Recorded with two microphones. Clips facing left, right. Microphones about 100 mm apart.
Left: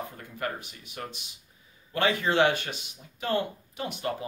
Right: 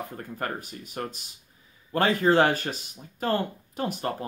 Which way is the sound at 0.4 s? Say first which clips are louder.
Even; 40° right (ahead or behind).